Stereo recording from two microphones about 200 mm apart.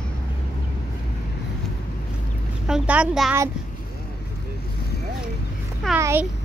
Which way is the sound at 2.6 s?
5° right (ahead or behind).